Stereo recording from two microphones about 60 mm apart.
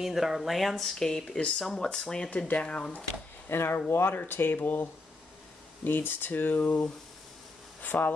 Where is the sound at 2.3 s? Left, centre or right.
Left.